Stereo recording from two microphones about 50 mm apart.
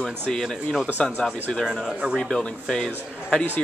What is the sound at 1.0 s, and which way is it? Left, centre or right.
Speech, centre.